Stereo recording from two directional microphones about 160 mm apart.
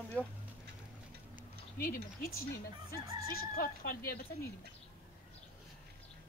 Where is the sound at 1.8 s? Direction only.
65° left (ahead or behind).